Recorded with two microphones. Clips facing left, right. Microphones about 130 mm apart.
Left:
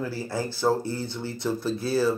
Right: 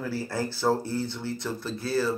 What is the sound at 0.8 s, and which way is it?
Speech, centre (ahead or behind).